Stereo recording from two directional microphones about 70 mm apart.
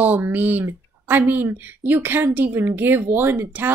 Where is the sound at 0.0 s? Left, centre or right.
Right.